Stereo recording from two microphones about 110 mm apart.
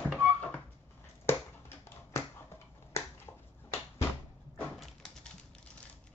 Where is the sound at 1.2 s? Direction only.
20° left (ahead or behind).